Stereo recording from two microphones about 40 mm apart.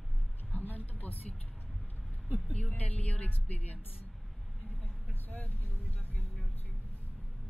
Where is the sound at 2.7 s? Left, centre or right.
Left.